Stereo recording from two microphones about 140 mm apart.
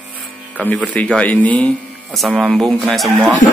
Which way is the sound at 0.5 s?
10° left (ahead or behind).